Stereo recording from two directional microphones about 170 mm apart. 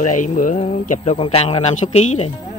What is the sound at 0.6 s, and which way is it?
Speech, 40° left (ahead or behind).